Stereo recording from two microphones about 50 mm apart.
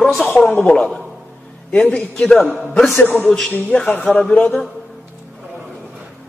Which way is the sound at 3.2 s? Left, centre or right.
Centre.